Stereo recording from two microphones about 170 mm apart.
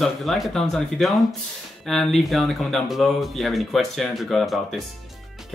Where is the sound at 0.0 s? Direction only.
Centre (ahead or behind).